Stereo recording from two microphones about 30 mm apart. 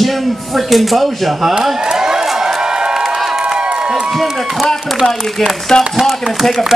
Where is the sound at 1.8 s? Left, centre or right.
Right.